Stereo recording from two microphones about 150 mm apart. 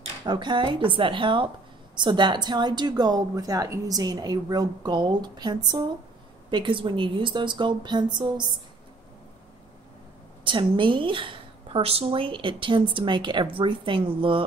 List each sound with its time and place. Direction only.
0.2 s a woman's voice: 30° right (ahead or behind)
10.4 s a woman's voice: 35° right (ahead or behind)